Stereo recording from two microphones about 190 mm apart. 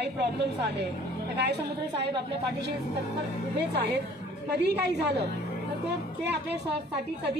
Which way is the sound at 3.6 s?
60° right (ahead or behind).